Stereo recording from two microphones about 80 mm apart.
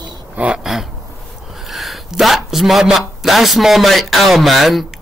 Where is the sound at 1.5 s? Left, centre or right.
Centre.